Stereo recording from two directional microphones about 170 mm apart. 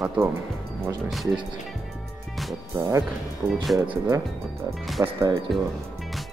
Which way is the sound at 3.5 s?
Centre (ahead or behind).